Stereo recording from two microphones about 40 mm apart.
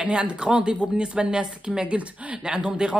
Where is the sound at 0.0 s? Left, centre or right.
Right.